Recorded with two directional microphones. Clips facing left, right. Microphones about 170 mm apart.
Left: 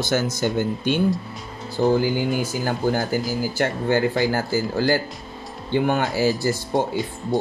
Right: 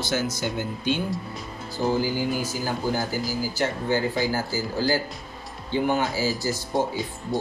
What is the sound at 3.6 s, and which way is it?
Speech, 60° left (ahead or behind).